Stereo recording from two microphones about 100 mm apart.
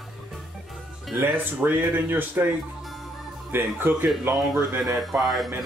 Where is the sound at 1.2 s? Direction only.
20° right (ahead or behind).